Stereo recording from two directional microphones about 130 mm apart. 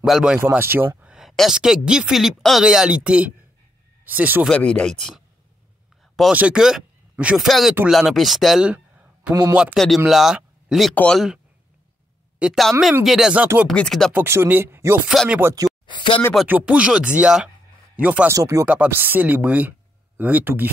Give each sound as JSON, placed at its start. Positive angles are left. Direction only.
{"t": 0.0, "sound": "a woman's voice", "side_deg": -5}
{"t": 0.4, "sound": "speech", "side_deg": -15}
{"t": 1.1, "sound": "a woman's voice", "side_deg": 0}
{"t": 4.5, "sound": "speech", "side_deg": 5}
{"t": 6.3, "sound": "a man's voice", "side_deg": -10}
{"t": 9.8, "sound": "a woman's voice", "side_deg": 0}
{"t": 14.1, "sound": "speech", "side_deg": -15}
{"t": 15.9, "sound": "a sound", "side_deg": 35}
{"t": 16.4, "sound": "a woman's voice", "side_deg": -10}
{"t": 18.3, "sound": "speech", "side_deg": -25}
{"t": 18.7, "sound": "speech", "side_deg": -15}